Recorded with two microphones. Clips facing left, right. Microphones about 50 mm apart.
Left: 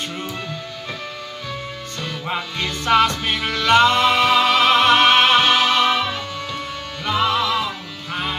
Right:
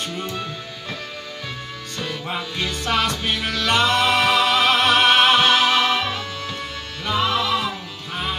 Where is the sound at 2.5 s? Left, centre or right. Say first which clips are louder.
Left 6 dB; centre.